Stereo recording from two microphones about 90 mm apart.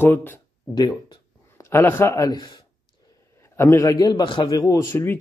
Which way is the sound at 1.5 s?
30° left (ahead or behind).